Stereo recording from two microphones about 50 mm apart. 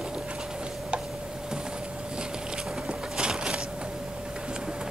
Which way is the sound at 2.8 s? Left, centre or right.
Centre.